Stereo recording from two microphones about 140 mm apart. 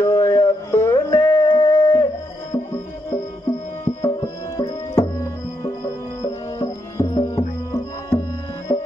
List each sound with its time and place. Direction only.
0.0 s music: 20° left (ahead or behind)
4.0 s music: 30° left (ahead or behind)